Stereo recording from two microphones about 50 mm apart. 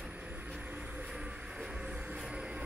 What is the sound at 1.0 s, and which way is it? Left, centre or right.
Music, centre.